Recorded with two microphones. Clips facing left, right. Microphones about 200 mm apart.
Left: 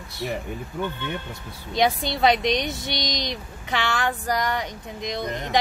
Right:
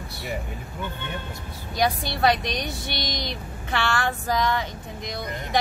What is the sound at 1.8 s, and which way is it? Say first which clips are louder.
Speech: left 2 dB; 20° left (ahead or behind).